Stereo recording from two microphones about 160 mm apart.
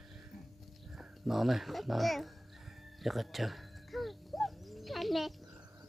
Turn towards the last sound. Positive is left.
turn(degrees=0)  # may be behind; listen again after turning